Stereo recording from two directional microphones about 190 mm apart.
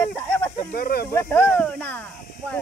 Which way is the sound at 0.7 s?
50° left (ahead or behind).